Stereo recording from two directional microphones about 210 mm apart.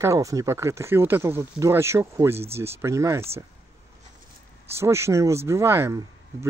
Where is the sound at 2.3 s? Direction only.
30° right (ahead or behind).